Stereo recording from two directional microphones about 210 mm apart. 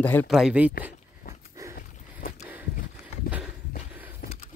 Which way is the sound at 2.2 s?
45° left (ahead or behind).